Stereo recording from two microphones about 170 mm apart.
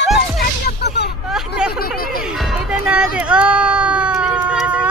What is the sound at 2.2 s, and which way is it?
Music, centre (ahead or behind).